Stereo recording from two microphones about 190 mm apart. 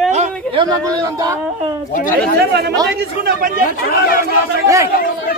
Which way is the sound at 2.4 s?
60° right (ahead or behind).